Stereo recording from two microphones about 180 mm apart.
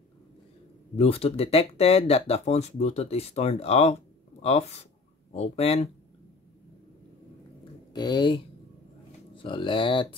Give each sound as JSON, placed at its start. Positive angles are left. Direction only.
{"t": 0.9, "sound": "speech", "side_deg": 35}
{"t": 7.9, "sound": "speech", "side_deg": 25}